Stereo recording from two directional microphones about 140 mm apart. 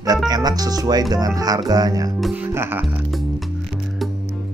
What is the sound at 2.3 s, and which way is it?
Music, 15° right (ahead or behind).